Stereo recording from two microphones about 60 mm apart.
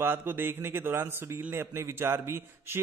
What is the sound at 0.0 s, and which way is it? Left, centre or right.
A man's voice, right.